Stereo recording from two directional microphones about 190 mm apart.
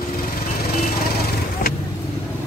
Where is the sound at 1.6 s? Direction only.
50° left (ahead or behind).